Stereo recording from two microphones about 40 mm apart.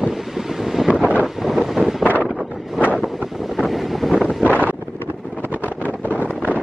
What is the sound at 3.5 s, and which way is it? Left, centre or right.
Wind noise, centre.